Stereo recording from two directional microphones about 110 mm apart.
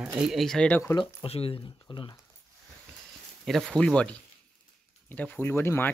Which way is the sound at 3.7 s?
5° left (ahead or behind).